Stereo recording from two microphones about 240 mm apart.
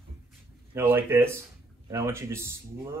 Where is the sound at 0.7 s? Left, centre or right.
Centre.